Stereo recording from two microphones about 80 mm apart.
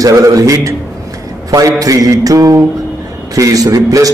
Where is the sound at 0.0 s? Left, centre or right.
Right.